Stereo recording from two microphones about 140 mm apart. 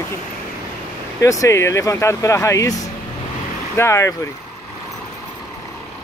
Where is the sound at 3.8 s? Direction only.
20° left (ahead or behind).